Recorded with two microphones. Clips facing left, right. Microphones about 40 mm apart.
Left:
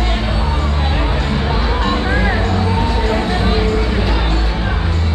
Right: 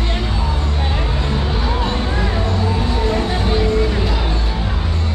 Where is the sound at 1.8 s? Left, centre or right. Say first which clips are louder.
Left 4 dB; left.